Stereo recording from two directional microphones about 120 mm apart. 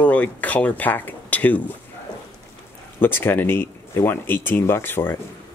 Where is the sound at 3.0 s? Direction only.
15° left (ahead or behind).